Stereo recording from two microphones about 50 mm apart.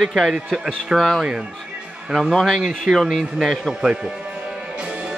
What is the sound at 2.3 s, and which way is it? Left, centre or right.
Speech, centre.